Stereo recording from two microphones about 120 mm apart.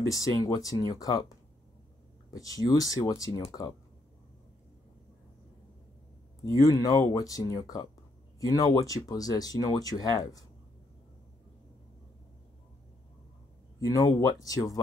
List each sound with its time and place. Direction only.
0.0 s speech: 30° left (ahead or behind)
2.3 s speech: 30° left (ahead or behind)
6.4 s speech: 30° left (ahead or behind)
13.7 s speech: 30° left (ahead or behind)